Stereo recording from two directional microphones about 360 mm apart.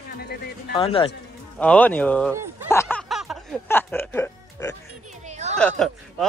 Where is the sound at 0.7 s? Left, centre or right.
Centre.